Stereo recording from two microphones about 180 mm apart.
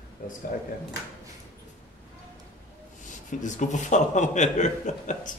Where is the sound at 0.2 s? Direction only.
45° left (ahead or behind).